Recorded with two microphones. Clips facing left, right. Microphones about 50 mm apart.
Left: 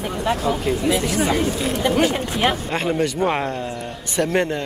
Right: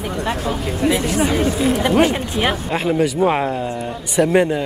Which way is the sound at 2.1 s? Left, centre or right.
Centre.